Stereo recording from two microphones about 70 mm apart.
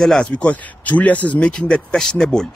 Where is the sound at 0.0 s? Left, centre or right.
Centre.